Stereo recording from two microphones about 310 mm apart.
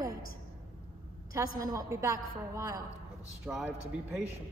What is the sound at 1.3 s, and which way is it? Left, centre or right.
A woman's voice, centre.